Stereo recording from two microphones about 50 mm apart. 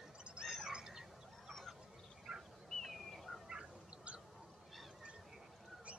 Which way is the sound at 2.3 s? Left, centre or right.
Centre.